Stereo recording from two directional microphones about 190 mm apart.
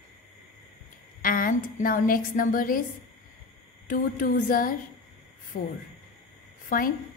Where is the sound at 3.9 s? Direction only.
45° left (ahead or behind).